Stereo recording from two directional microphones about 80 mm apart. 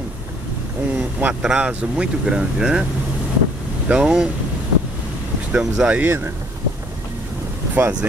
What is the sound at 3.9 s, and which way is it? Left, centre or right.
Speech, centre.